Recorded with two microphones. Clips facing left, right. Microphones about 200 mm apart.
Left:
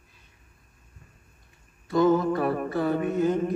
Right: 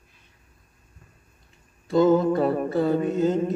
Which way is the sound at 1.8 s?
25° right (ahead or behind).